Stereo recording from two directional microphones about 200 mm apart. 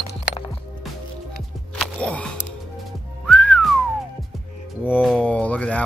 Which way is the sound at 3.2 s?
5° left (ahead or behind).